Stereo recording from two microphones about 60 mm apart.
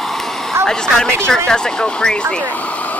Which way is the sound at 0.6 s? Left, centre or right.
Centre.